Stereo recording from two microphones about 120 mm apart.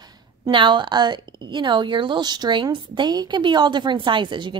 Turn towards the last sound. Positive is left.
turn(degrees=-40)  # may be behind; listen again after turning